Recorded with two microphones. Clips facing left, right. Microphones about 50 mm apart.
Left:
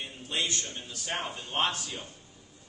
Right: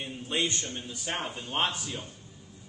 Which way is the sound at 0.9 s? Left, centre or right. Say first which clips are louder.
Left 1 dB; centre.